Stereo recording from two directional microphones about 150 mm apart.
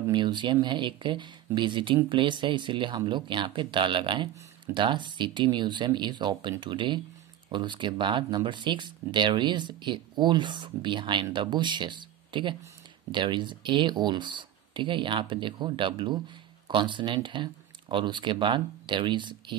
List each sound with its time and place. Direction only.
0.1 s speech: 30° right (ahead or behind)